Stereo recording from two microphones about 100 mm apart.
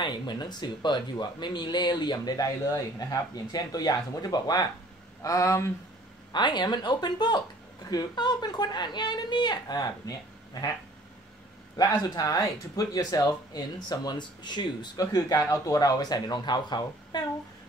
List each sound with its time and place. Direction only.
0.0 s speech: 50° left (ahead or behind); by 5.7 s 30° left (ahead or behind)
6.3 s speech: 50° left (ahead or behind)
11.9 s speech: 35° left (ahead or behind)
15.1 s speech: 35° left (ahead or behind)